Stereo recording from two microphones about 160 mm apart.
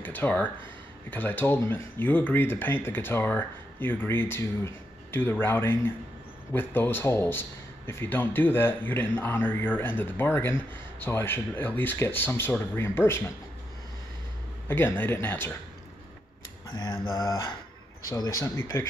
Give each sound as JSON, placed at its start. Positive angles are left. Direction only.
{"t": 0.0, "sound": "a man's voice", "side_deg": 10}
{"t": 14.7, "sound": "a man's voice", "side_deg": 15}
{"t": 16.7, "sound": "mantra", "side_deg": 30}
{"t": 17.1, "sound": "mantra", "side_deg": 20}
{"t": 18.1, "sound": "a man's voice", "side_deg": 20}